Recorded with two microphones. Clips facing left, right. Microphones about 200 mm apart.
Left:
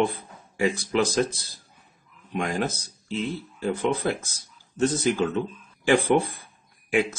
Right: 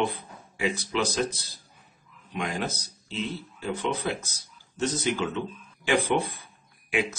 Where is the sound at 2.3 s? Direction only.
50° left (ahead or behind).